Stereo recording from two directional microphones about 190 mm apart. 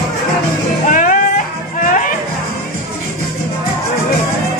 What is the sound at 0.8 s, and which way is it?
Music, 45° left (ahead or behind).